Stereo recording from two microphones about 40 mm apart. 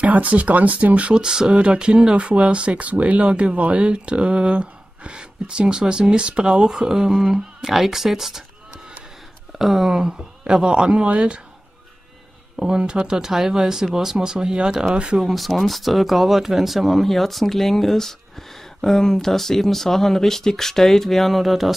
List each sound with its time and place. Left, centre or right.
0.0 s speech: right
1.2 s speech: centre
1.5 s speech: right
6.8 s speech: centre
9.6 s speech: centre; by 11.4 s right
12.5 s speech: right
15.2 s speech: centre